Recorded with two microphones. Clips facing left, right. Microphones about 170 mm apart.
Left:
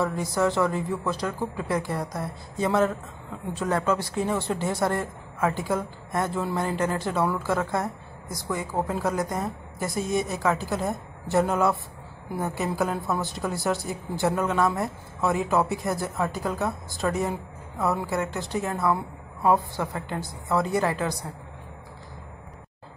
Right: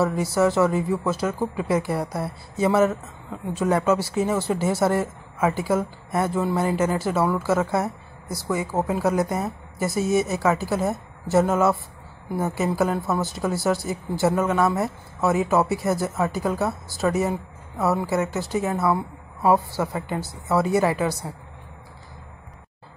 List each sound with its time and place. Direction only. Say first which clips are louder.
0.0 s a woman's voice: right 4 dB; 5° right (ahead or behind)